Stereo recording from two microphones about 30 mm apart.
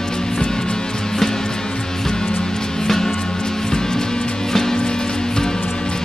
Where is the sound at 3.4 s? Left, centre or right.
Left.